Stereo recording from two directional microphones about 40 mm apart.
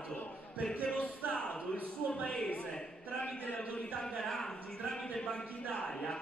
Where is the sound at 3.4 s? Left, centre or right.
Left.